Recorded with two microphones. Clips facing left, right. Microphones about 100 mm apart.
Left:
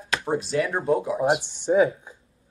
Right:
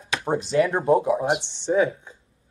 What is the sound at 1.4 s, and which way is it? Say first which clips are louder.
Speech: left 1 dB; 10° left (ahead or behind).